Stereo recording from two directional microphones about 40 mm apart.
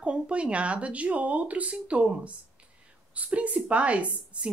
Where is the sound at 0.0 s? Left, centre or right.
Right.